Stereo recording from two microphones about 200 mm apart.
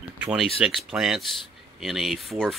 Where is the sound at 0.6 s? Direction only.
5° right (ahead or behind).